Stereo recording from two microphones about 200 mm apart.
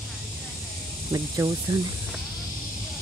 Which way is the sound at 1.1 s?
15° right (ahead or behind).